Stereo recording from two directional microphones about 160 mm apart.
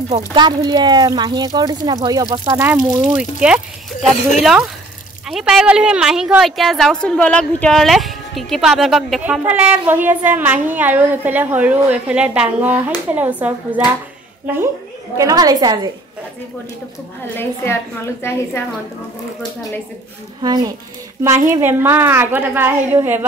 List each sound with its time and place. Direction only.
0.1 s speech: 30° right (ahead or behind)
3.2 s a woman's voice: 5° right (ahead or behind); by 15.9 s 25° right (ahead or behind)
18.2 s a woman's voice: 15° left (ahead or behind)
20.4 s a woman's voice: 25° right (ahead or behind)